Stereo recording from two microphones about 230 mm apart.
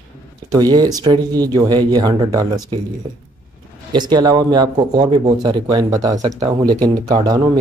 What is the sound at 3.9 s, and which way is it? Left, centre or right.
Speech, centre.